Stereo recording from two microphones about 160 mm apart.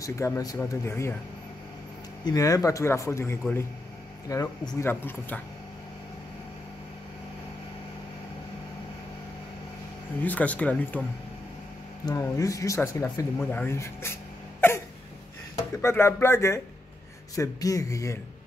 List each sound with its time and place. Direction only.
0.0 s speech: 20° left (ahead or behind)
2.2 s speech: 20° left (ahead or behind)
10.2 s speech: 10° left (ahead or behind)
12.1 s speech: 20° left (ahead or behind)
14.6 s cough: 15° left (ahead or behind)
15.5 s speech: 15° left (ahead or behind)